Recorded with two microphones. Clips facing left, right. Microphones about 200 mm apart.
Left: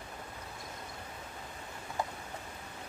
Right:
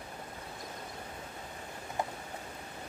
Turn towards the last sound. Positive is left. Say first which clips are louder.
# right 1 dB
turn(degrees=-20)  # may be behind; listen again after turning